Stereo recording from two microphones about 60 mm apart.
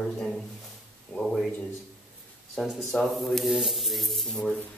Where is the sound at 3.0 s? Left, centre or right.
Centre.